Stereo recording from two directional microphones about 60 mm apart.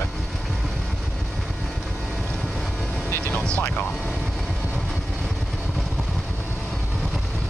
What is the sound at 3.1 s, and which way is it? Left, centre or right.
Music, left.